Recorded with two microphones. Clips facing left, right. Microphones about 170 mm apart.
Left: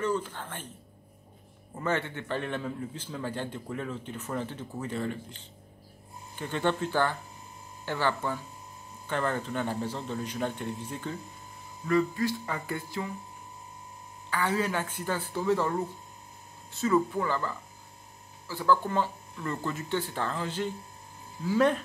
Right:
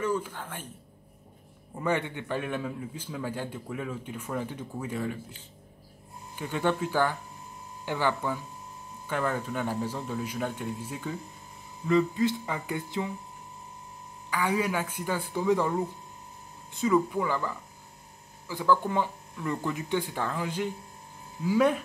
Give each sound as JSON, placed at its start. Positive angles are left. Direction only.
{"t": 0.0, "sound": "speech", "side_deg": -10}
{"t": 1.8, "sound": "speech", "side_deg": -15}
{"t": 12.2, "sound": "speech", "side_deg": -20}
{"t": 14.3, "sound": "speech", "side_deg": -10}
{"t": 16.7, "sound": "speech", "side_deg": -10}